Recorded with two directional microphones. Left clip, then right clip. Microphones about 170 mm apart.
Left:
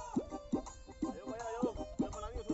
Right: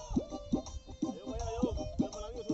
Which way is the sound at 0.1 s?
40° right (ahead or behind).